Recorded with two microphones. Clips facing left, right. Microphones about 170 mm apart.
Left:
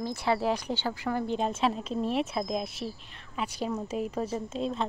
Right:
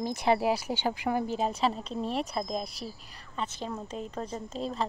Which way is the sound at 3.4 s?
15° left (ahead or behind).